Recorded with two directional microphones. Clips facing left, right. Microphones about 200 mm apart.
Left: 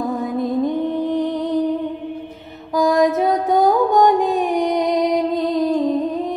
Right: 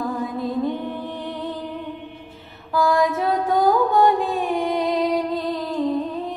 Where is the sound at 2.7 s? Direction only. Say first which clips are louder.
Left 4 dB; 20° left (ahead or behind).